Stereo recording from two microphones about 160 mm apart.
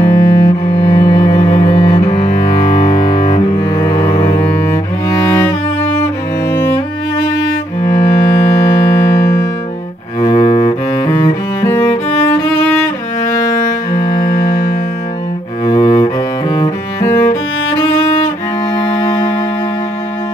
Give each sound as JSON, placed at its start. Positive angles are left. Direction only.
{"t": 0.0, "sound": "cello", "side_deg": 20}
{"t": 4.5, "sound": "cello", "side_deg": 15}
{"t": 6.5, "sound": "cello", "side_deg": 15}
{"t": 10.2, "sound": "cello", "side_deg": 30}
{"t": 14.1, "sound": "music", "side_deg": 50}
{"t": 15.6, "sound": "cello", "side_deg": 30}
{"t": 17.0, "sound": "music", "side_deg": 15}
{"t": 18.8, "sound": "music", "side_deg": 25}